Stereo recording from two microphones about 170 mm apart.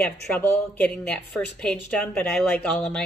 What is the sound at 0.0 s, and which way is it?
A woman's voice, 10° left (ahead or behind).